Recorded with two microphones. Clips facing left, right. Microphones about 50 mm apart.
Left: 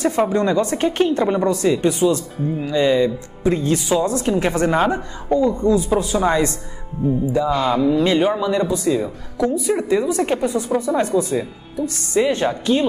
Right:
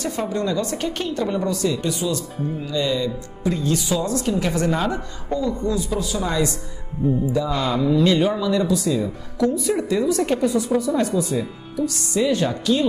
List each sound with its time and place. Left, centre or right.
0.0 s a woman's voice: left
7.3 s a woman's voice: centre